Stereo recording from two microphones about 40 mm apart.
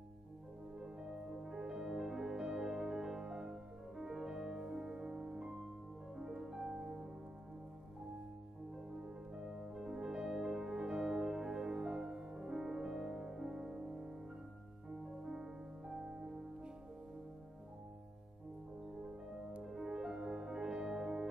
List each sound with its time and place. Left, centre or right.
0.7 s music: centre
8.9 s music: centre
19.6 s music: centre